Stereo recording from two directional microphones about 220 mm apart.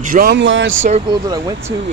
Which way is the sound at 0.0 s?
40° right (ahead or behind).